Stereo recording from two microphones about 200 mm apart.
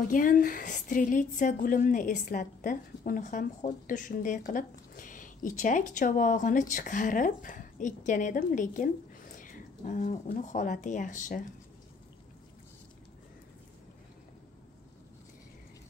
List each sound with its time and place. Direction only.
0.1 s a woman's voice: 45° left (ahead or behind)